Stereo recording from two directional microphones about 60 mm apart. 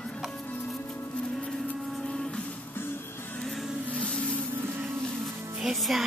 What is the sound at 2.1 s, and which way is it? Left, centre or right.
Music, centre.